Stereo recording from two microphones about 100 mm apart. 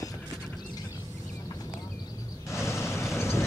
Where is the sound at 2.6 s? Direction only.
25° left (ahead or behind).